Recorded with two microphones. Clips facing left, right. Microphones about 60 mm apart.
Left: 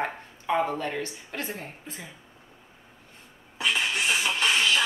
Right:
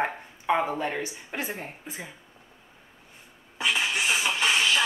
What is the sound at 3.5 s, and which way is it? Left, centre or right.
Music, centre.